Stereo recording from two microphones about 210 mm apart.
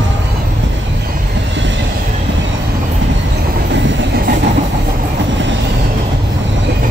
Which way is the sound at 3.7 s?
60° right (ahead or behind).